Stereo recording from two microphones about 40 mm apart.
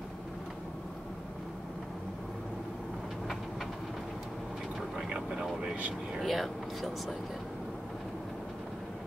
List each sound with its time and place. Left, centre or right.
5.1 s vehicle: right
6.1 s speech: centre